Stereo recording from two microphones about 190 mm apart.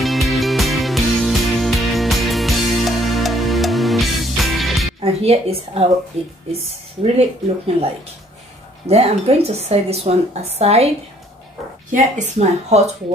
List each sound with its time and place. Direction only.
0.0 s music: centre (ahead or behind)
5.0 s a woman's voice: 30° right (ahead or behind)
11.9 s a woman's voice: 35° right (ahead or behind)